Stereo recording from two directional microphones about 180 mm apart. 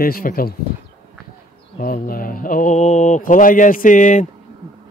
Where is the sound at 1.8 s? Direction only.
50° left (ahead or behind).